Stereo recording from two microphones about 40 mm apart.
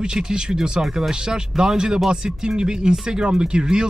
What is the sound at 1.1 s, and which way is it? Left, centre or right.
Speech, centre.